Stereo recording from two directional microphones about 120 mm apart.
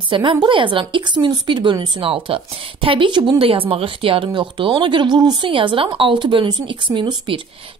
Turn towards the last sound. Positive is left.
turn(degrees=-40)  # may be behind; listen again after turning